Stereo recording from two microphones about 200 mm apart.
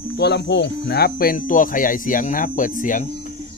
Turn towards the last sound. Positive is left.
turn(degrees=40)  # may be behind; listen again after turning